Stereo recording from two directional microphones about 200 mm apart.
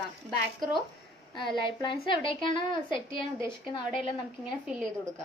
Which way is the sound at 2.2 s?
25° left (ahead or behind).